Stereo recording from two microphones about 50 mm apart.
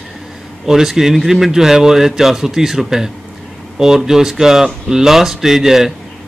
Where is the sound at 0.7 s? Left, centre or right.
Centre.